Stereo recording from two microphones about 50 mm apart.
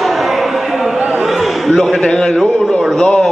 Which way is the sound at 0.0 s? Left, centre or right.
Centre.